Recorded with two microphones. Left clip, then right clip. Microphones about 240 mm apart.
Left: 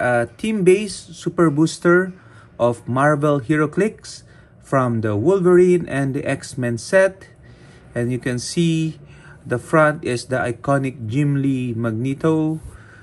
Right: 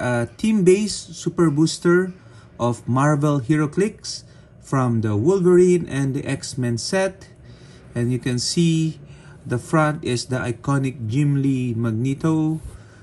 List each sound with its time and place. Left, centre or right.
0.0 s speech: centre
0.8 s speech: centre
7.9 s speech: centre
8.4 s speech: centre
9.5 s speech: centre
11.1 s speech: centre